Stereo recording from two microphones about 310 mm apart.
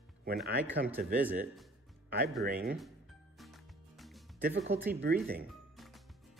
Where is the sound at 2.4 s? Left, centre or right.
Right.